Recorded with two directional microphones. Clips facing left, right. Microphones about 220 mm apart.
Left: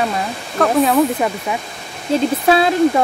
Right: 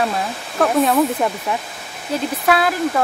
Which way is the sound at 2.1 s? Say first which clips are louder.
Left 4 dB; 25° left (ahead or behind).